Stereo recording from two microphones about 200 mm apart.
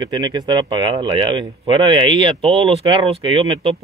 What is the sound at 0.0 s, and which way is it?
Speech, 20° right (ahead or behind).